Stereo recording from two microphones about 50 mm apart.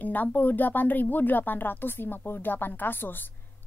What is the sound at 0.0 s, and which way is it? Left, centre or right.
A woman's voice, left.